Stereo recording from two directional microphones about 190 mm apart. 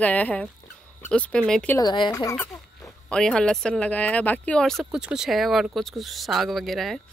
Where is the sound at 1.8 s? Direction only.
25° left (ahead or behind).